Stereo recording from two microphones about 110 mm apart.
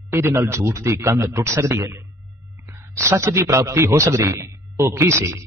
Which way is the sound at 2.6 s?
25° right (ahead or behind).